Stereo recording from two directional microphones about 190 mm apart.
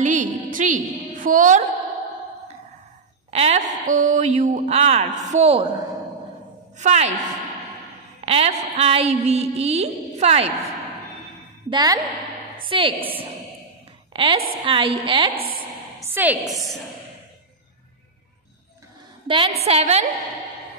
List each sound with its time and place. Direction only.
0.0 s a sound: 40° right (ahead or behind)
3.3 s a woman's voice: 35° right (ahead or behind)
6.8 s a woman's voice: 35° right (ahead or behind)
8.3 s a sound: 30° right (ahead or behind)
8.7 s a woman's voice: 30° right (ahead or behind)
11.7 s a woman's voice: 20° right (ahead or behind)
15.3 s a woman's voice: 50° right (ahead or behind)
16.0 s a woman's voice: 10° right (ahead or behind)
19.2 s a woman's voice: 25° right (ahead or behind)